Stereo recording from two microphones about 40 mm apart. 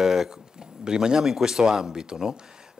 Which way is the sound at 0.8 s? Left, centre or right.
Centre.